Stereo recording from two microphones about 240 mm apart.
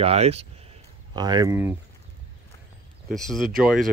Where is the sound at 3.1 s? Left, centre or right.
Centre.